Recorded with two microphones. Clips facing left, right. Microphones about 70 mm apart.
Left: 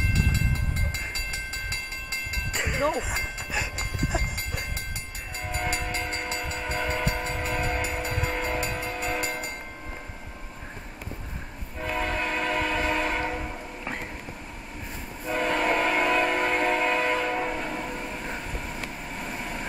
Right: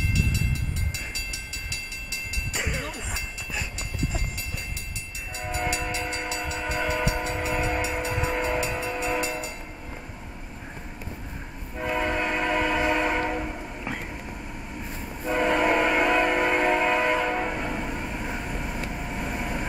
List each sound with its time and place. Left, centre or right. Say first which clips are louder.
5.7 s train: right 1 dB; left
6.8 s train: right 2 dB; centre
9.2 s train: right 1 dB; left
11.8 s train: right 2 dB; centre
15.2 s train: right 3 dB; centre
18.9 s vehicle: right 3 dB; centre